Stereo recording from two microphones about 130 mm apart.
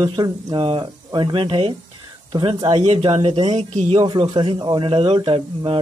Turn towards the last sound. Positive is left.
turn(degrees=-45)  # may be behind; listen again after turning